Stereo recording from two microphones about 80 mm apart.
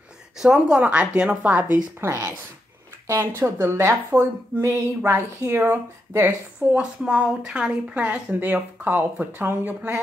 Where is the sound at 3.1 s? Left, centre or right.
Right.